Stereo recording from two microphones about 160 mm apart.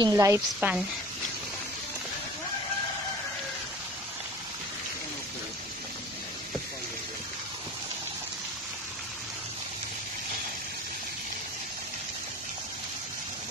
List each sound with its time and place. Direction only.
0.0 s a woman's voice: 20° right (ahead or behind)
0.6 s speech: 10° right (ahead or behind)